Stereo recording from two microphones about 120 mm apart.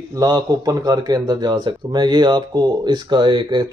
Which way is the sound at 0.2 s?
35° right (ahead or behind).